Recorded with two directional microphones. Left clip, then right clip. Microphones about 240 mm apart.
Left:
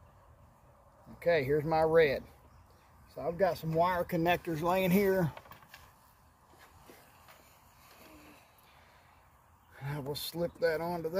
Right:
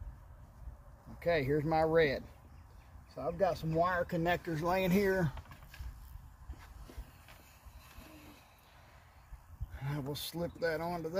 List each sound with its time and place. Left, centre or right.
1.2 s speech: centre
9.8 s speech: centre